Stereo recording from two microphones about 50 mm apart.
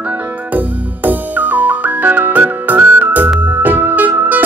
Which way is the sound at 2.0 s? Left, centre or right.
Right.